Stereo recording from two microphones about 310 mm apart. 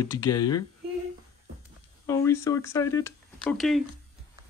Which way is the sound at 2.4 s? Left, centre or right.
Centre.